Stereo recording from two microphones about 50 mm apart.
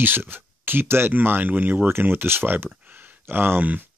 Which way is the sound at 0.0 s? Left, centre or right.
Right.